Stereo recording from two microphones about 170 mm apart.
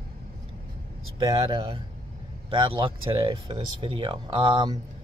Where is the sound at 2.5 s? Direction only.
30° right (ahead or behind).